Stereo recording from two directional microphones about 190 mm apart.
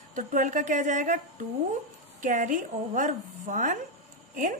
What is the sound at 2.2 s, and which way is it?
A woman's voice, 40° right (ahead or behind).